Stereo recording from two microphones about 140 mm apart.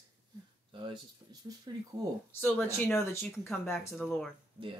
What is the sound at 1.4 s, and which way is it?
Speech, 30° right (ahead or behind).